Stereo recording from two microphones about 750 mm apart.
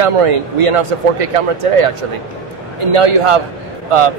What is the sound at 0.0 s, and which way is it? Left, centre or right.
A man's voice, right.